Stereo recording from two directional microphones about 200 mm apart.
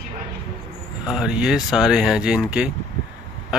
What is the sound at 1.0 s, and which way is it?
Speech, centre (ahead or behind).